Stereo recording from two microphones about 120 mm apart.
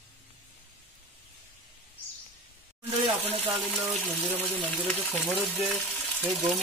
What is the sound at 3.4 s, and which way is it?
Speech, centre (ahead or behind).